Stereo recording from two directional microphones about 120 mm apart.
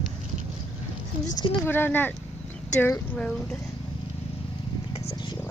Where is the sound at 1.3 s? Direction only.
45° left (ahead or behind).